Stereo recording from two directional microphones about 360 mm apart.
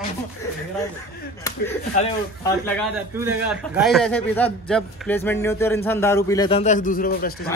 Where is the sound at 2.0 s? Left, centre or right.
Centre.